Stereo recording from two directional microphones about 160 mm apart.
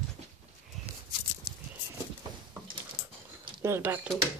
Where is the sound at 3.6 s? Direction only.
15° right (ahead or behind).